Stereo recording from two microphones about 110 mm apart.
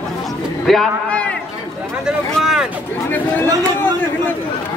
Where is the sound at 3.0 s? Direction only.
15° left (ahead or behind).